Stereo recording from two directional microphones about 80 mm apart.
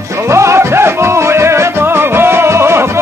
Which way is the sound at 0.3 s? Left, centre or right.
Right.